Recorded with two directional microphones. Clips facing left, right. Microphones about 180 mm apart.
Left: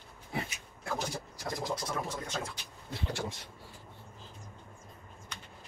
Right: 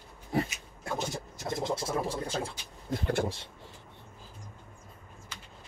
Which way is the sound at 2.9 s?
50° right (ahead or behind).